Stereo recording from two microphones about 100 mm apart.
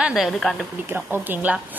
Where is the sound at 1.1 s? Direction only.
20° right (ahead or behind).